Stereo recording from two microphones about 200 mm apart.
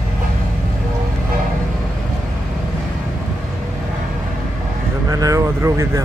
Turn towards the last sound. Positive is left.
turn(degrees=-15)  # may be behind; listen again after turning